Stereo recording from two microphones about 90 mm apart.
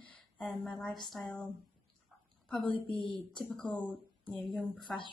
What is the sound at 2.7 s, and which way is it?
Speech, 75° left (ahead or behind).